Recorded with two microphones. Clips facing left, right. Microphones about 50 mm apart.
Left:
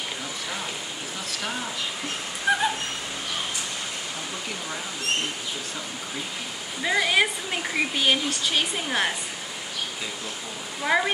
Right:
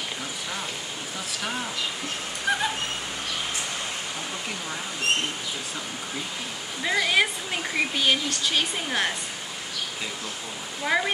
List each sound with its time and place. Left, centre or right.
2.5 s a sound: centre
6.8 s speech: centre
10.8 s speech: centre